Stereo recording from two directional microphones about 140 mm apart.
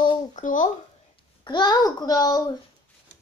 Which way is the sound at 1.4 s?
30° left (ahead or behind).